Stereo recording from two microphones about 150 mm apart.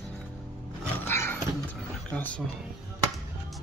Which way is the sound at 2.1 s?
10° left (ahead or behind).